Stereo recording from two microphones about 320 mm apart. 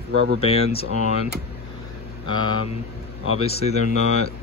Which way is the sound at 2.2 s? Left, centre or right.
Centre.